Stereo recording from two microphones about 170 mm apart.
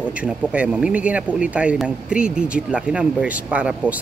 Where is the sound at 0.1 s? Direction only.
5° right (ahead or behind).